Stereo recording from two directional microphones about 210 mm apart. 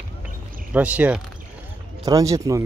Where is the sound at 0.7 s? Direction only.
5° right (ahead or behind).